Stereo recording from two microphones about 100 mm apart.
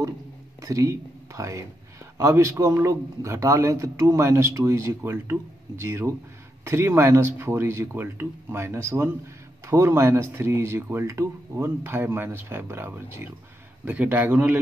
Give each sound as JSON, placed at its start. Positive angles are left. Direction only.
{"t": 0.6, "sound": "a man's voice", "side_deg": -30}